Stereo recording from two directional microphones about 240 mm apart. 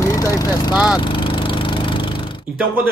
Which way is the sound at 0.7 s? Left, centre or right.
Centre.